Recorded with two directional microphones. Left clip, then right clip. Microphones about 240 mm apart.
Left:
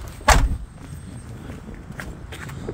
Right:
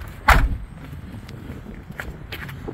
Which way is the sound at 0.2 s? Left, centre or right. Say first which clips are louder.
Right 1 dB; left.